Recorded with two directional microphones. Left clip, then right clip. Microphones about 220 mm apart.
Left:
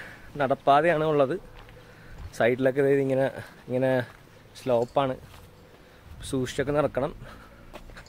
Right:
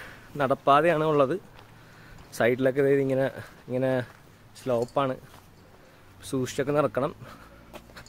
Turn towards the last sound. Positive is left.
turn(degrees=-15)  # may be behind; listen again after turning